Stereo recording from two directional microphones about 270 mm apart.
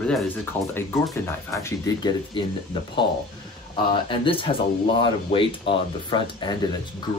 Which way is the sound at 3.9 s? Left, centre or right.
Centre.